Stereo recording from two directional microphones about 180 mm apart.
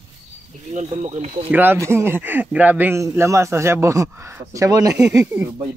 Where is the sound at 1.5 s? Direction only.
10° right (ahead or behind).